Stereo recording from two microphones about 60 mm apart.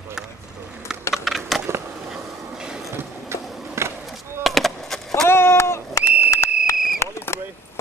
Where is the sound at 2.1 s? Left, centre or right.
Centre.